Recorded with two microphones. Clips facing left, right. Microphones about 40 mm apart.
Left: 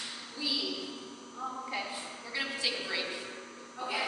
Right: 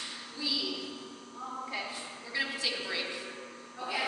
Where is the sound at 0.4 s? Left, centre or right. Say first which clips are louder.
Even; centre.